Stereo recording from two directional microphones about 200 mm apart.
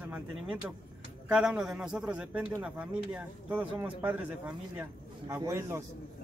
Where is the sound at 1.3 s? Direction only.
5° right (ahead or behind).